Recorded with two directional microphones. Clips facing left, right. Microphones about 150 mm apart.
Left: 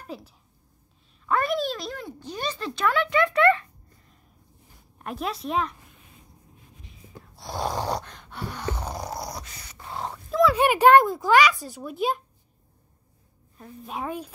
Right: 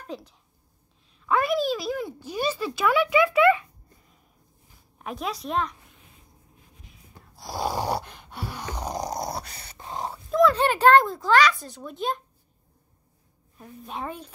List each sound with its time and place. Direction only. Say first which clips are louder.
0.0 s a woman's voice: right 1 dB; 5° left (ahead or behind)
4.9 s a woman's voice: left 1 dB; centre (ahead or behind)
6.9 s a sound: left 7 dB; centre (ahead or behind); by 9.4 s 20° right (ahead or behind)
9.5 s dog: right 1 dB; 30° right (ahead or behind)
10.5 s a child's voice: left 5 dB; 10° left (ahead or behind)
13.6 s a woman's voice: left 1 dB; centre (ahead or behind)